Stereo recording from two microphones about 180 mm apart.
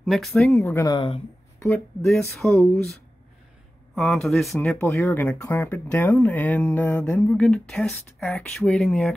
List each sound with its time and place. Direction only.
0.0 s speech: centre (ahead or behind)
0.5 s speech: 15° left (ahead or behind)
0.9 s speech: 30° left (ahead or behind)
2.0 s speech: centre (ahead or behind)
2.4 s speech: 10° left (ahead or behind)
3.9 s speech: 5° left (ahead or behind)